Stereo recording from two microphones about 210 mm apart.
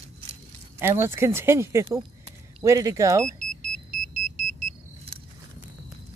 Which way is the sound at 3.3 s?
35° right (ahead or behind).